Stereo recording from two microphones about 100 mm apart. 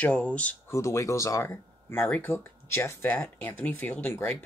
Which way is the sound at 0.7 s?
30° left (ahead or behind).